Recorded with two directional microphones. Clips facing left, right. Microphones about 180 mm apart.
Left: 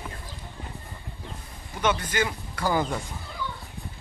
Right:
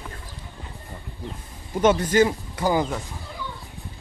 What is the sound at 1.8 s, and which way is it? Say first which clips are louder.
Speech: right 8 dB; 40° right (ahead or behind).